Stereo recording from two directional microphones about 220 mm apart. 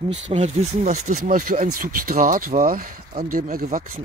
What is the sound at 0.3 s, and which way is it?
Speech, 30° right (ahead or behind).